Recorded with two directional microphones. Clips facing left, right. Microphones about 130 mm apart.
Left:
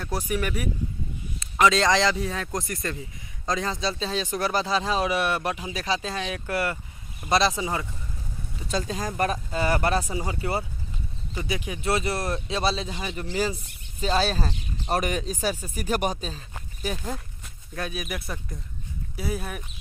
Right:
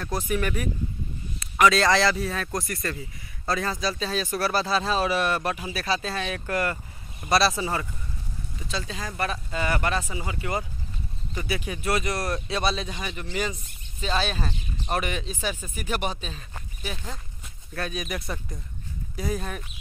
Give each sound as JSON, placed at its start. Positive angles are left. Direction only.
{"t": 0.0, "sound": "speech", "side_deg": 10}
{"t": 8.6, "sound": "speech", "side_deg": 45}
{"t": 11.3, "sound": "speech", "side_deg": 15}
{"t": 11.8, "sound": "speech", "side_deg": 30}
{"t": 17.7, "sound": "speech", "side_deg": 10}